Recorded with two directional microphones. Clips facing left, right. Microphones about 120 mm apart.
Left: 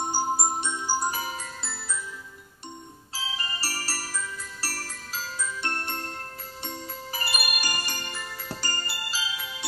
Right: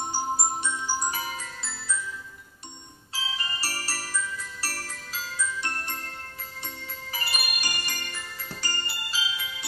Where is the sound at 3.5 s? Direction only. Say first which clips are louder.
Even; 35° left (ahead or behind).